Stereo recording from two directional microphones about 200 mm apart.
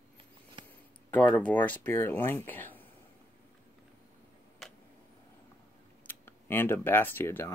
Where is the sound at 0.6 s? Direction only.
25° right (ahead or behind).